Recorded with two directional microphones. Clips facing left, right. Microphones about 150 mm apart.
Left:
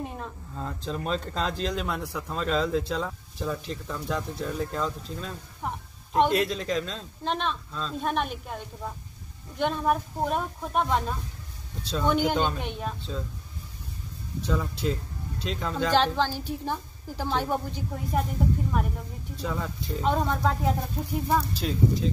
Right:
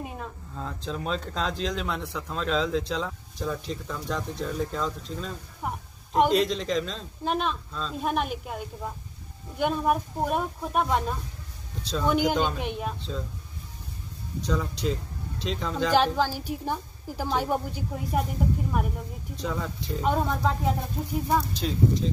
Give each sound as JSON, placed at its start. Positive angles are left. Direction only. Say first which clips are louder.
{"t": 0.0, "sound": "speech", "louder": "left 1 dB", "side_deg": 0}
{"t": 14.5, "sound": "speech", "louder": "even", "side_deg": 5}
{"t": 15.9, "sound": "a woman's voice", "louder": "right 1 dB", "side_deg": -10}